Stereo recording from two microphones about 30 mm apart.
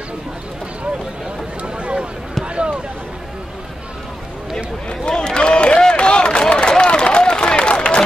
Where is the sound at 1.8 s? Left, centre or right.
Right.